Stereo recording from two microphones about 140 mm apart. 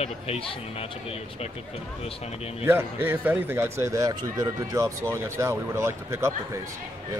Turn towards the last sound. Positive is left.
turn(degrees=-20)  # may be behind; listen again after turning